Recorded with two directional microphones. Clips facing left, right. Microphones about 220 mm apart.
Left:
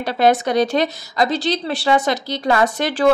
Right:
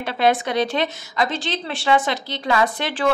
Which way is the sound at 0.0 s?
40° left (ahead or behind).